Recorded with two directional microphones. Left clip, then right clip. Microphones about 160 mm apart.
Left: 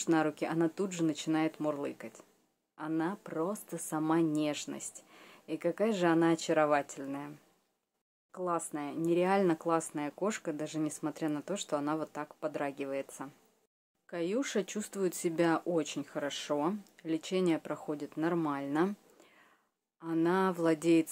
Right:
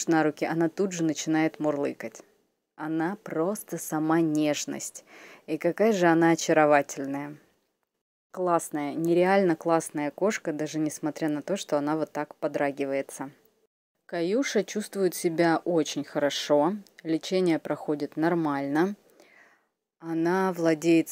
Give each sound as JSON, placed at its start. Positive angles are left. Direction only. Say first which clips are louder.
{"t": 0.1, "sound": "speech", "louder": "right 6 dB", "side_deg": -25}
{"t": 20.2, "sound": "speech", "louder": "right 5 dB", "side_deg": -20}